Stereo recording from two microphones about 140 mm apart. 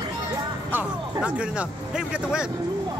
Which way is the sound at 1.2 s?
10° right (ahead or behind).